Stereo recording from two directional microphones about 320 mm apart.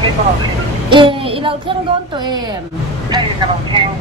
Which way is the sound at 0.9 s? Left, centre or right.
Centre.